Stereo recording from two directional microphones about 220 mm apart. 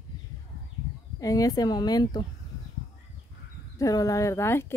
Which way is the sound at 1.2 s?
15° left (ahead or behind).